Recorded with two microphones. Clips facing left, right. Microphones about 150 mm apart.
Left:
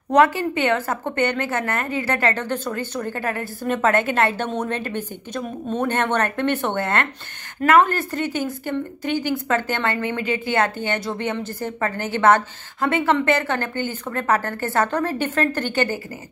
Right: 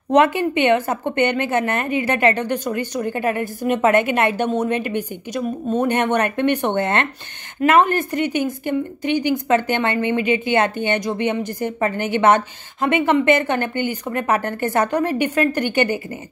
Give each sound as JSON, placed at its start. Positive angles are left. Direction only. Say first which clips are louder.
{"t": 0.1, "sound": "a woman's voice", "louder": "right 1 dB", "side_deg": -20}